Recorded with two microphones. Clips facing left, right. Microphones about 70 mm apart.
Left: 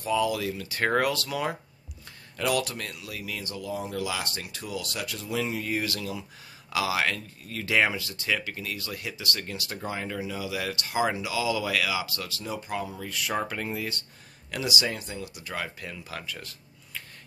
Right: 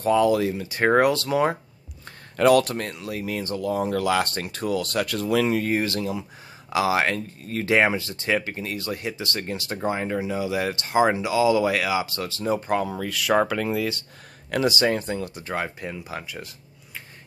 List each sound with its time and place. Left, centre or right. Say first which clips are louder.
0.0 s speech: right 7 dB; right
2.3 s speech: right 10 dB; right
5.7 s speech: right 6 dB; right
12.5 s speech: right 7 dB; right
13.0 s speech: right 9 dB; right
14.5 s speech: right 8 dB; right; by 17.0 s centre